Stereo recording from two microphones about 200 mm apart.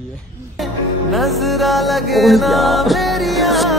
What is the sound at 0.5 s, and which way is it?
Music, centre (ahead or behind).